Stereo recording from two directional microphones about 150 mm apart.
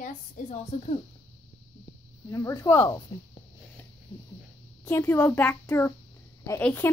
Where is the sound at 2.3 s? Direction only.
20° left (ahead or behind).